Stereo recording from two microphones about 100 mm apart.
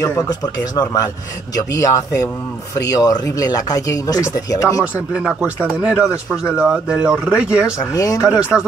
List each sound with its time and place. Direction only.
0.0 s speech: 35° left (ahead or behind)
5.1 s speech: 10° right (ahead or behind)
7.9 s speech: 35° left (ahead or behind)
8.3 s speech: 10° right (ahead or behind)